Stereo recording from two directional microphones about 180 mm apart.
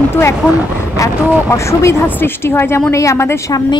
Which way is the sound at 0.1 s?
15° left (ahead or behind).